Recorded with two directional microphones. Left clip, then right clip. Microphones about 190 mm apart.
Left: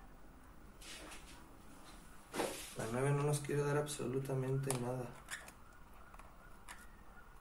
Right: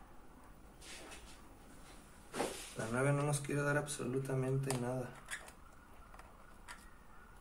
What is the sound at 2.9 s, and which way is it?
Speech, 25° right (ahead or behind).